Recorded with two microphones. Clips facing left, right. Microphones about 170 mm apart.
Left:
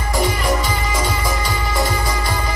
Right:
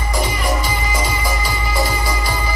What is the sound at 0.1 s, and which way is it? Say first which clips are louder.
Music: left 2 dB; centre (ahead or behind).